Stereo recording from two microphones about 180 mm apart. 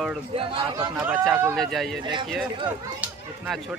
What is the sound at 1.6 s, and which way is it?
Speech, centre (ahead or behind).